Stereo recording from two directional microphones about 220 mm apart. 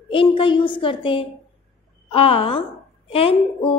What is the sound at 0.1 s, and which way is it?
Speech, 25° left (ahead or behind).